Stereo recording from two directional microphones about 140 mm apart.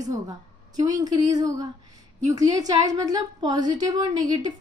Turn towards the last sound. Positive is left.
turn(degrees=-30)  # may be behind; listen again after turning